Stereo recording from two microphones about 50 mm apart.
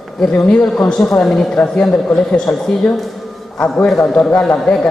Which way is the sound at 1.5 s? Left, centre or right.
Left.